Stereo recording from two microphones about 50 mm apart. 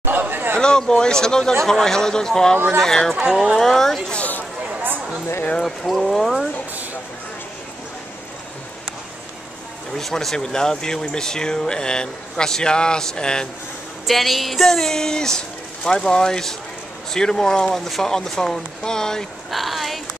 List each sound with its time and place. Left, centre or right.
0.0 s chatter: right
0.6 s speech: centre
3.3 s speech: centre
3.6 s speech: centre
5.6 s speech: centre
9.9 s speech: centre
14.0 s speech: centre
19.5 s speech: centre